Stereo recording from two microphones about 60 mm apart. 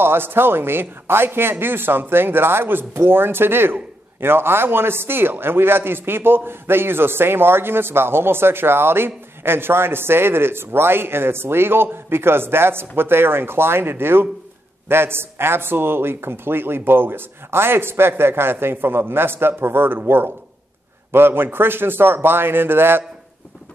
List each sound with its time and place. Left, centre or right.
0.0 s a man's voice: right
21.1 s a man's voice: right